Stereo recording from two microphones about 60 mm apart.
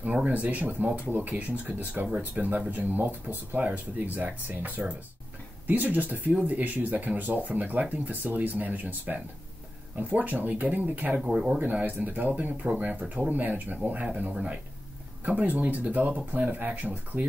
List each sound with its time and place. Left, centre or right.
0.0 s speech: right
11.1 s speech: centre
11.5 s speech: right